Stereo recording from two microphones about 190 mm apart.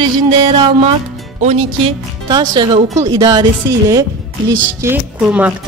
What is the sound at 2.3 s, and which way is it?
Music, 20° right (ahead or behind).